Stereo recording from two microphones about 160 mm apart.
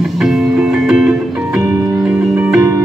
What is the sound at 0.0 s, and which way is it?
Music, centre (ahead or behind).